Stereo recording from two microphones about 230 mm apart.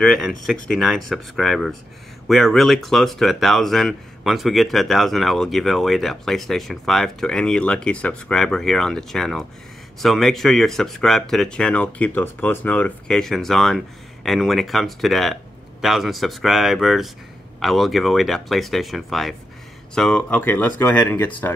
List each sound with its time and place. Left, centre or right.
0.0 s speech: centre